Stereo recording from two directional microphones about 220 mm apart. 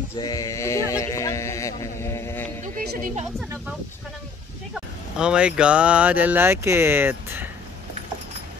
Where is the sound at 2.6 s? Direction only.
30° right (ahead or behind).